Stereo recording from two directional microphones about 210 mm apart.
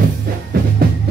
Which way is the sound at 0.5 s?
45° right (ahead or behind).